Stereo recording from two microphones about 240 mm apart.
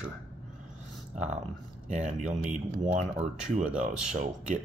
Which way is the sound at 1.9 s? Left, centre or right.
Right.